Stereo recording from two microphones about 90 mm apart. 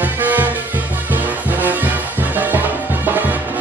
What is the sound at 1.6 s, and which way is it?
Music, 20° right (ahead or behind).